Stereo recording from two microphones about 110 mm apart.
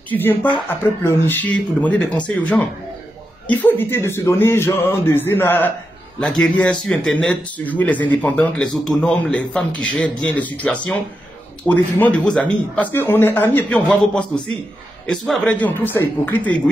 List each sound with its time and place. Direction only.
0.1 s speech: 15° left (ahead or behind)
6.1 s speech: 5° left (ahead or behind)